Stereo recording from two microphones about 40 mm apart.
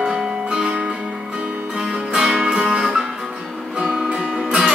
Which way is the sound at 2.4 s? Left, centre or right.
Centre.